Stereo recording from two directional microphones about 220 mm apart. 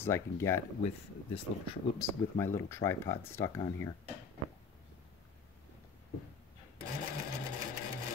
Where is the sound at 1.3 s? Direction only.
25° left (ahead or behind).